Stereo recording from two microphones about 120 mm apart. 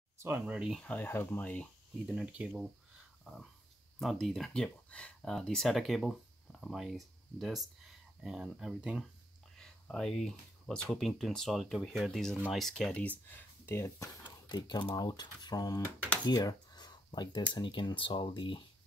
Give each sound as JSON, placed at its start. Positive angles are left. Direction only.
{"t": 0.5, "sound": "speech", "side_deg": -10}
{"t": 0.7, "sound": "speech", "side_deg": 15}
{"t": 2.0, "sound": "speech", "side_deg": -5}
{"t": 4.0, "sound": "speech", "side_deg": 0}
{"t": 9.6, "sound": "speech", "side_deg": 5}
{"t": 13.7, "sound": "speech", "side_deg": 20}
{"t": 14.5, "sound": "speech", "side_deg": 40}
{"t": 16.3, "sound": "a sound", "side_deg": 35}
{"t": 17.6, "sound": "speech", "side_deg": 40}